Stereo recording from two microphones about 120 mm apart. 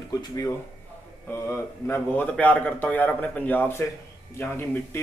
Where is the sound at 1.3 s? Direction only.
20° left (ahead or behind).